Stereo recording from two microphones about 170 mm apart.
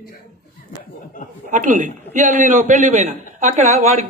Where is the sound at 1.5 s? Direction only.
50° right (ahead or behind).